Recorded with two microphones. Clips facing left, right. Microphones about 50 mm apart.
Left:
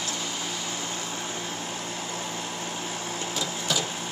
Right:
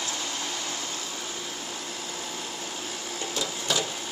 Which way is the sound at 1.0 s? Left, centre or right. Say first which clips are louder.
Left 3 dB; left.